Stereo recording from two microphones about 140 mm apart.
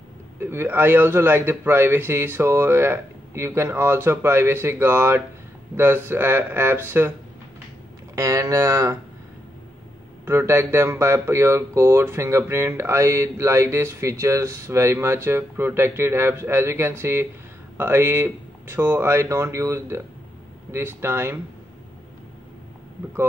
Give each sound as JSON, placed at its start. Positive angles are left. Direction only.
{"t": 0.4, "sound": "a man's voice", "side_deg": -15}
{"t": 8.2, "sound": "speech", "side_deg": -25}
{"t": 10.2, "sound": "a man's voice", "side_deg": -20}